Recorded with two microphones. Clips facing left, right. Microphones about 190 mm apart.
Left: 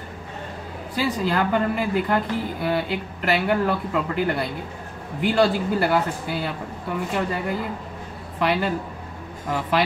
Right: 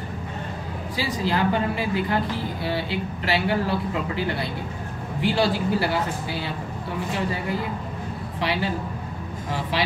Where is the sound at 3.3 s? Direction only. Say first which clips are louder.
Left 3 dB; 50° left (ahead or behind).